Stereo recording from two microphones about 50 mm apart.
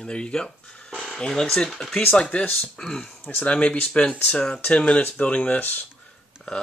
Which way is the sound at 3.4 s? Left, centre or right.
Left.